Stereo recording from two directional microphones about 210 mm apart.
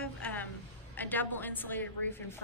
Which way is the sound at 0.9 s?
10° left (ahead or behind).